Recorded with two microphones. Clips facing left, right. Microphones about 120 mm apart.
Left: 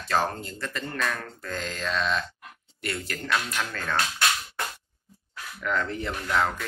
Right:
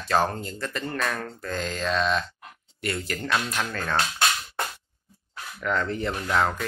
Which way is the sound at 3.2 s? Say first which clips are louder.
Right 1 dB; 20° right (ahead or behind).